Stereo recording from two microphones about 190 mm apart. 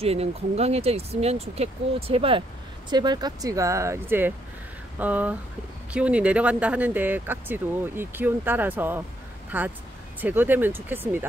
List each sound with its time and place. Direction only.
0.0 s speech: 30° right (ahead or behind); by 11.2 s 10° right (ahead or behind)